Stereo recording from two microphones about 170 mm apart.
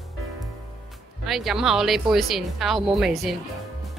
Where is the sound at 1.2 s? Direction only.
Centre (ahead or behind).